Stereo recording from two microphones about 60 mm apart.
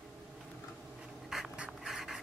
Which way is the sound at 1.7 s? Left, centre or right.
Centre.